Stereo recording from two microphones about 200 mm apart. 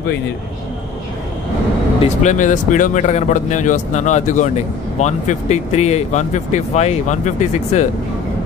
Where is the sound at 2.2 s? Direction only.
40° left (ahead or behind).